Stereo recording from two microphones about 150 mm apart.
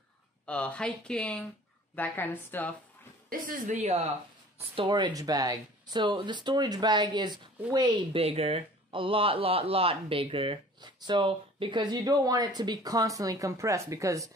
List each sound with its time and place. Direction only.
0.5 s speech: 10° left (ahead or behind)
3.3 s a woman's voice: 65° right (ahead or behind); by 4.1 s 45° right (ahead or behind)
4.6 s speech: 35° right (ahead or behind)
8.1 s speech: 40° right (ahead or behind); by 14.2 s 20° right (ahead or behind)